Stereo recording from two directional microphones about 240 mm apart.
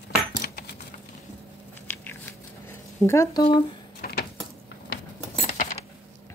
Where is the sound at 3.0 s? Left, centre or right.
Centre.